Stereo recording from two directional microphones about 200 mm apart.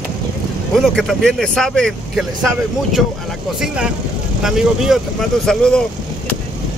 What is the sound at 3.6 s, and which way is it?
Speech, 5° right (ahead or behind).